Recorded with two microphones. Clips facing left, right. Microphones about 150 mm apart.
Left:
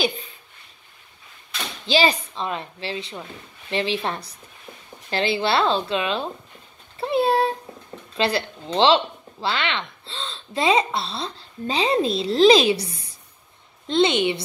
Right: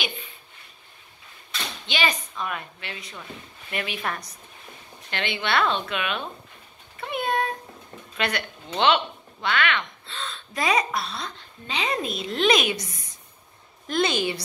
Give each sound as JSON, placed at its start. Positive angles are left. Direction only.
{"t": 1.9, "sound": "a woman's voice", "side_deg": 30}